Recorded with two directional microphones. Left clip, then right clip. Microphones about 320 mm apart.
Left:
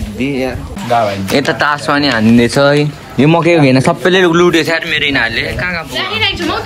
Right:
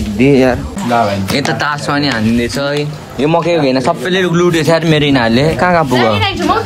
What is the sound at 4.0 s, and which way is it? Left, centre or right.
A man's voice, centre.